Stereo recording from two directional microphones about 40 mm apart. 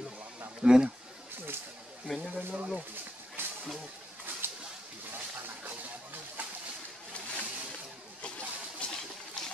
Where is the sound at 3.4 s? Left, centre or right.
Right.